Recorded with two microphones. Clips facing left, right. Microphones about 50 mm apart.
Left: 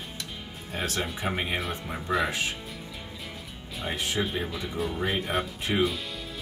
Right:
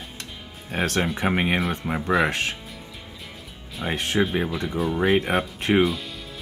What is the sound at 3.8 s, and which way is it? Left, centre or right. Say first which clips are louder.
Speech: right 6 dB; right.